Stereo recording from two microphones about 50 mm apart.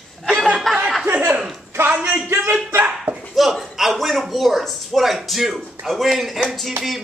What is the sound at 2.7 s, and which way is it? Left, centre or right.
Speech, right.